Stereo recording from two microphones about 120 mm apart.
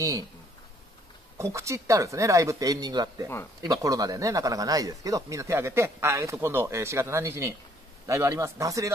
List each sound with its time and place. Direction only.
1.4 s speech: 25° right (ahead or behind)